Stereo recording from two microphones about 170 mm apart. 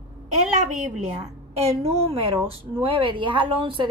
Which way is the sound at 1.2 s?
40° right (ahead or behind).